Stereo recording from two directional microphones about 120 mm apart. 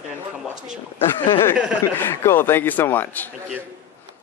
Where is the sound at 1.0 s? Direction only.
45° left (ahead or behind).